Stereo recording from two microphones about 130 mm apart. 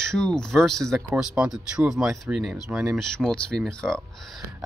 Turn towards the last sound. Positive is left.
turn(degrees=0)  # may be behind; listen again after turning